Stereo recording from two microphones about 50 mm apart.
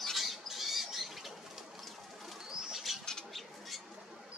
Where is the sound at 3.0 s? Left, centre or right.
Centre.